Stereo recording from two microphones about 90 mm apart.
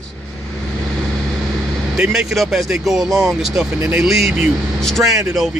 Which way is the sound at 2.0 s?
5° right (ahead or behind).